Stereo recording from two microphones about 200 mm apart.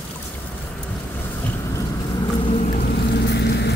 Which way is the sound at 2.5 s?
35° left (ahead or behind).